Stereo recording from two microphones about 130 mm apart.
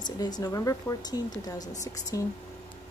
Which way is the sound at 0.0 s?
30° left (ahead or behind).